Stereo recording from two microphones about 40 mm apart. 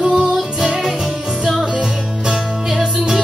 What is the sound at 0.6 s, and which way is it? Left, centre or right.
Music, centre.